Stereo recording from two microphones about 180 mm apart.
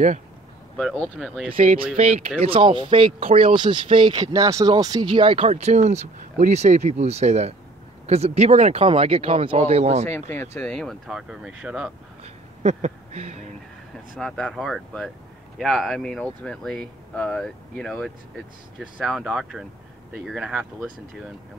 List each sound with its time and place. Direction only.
0.7 s speech: 5° left (ahead or behind)
2.0 s speech: 40° right (ahead or behind)
10.3 s speech: 15° left (ahead or behind); by 11.9 s 5° right (ahead or behind)
12.2 s a sound: 35° right (ahead or behind)
14.1 s speech: centre (ahead or behind)